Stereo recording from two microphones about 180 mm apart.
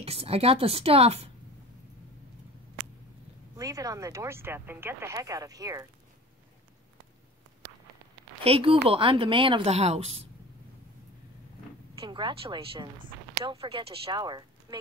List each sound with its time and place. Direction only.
0.0 s a woman's voice: 35° right (ahead or behind)
3.5 s speech: 20° right (ahead or behind)
8.5 s a woman's voice: 30° right (ahead or behind)
12.0 s speech: 25° right (ahead or behind)